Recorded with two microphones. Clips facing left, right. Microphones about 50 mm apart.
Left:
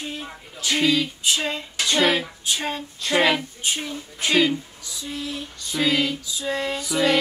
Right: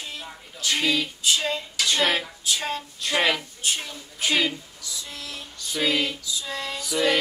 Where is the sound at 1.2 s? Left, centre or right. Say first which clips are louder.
Even; left.